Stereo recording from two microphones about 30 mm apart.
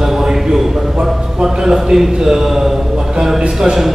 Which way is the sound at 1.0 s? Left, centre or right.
Centre.